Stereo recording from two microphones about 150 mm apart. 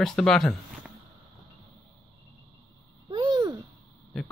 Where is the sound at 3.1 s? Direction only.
30° right (ahead or behind).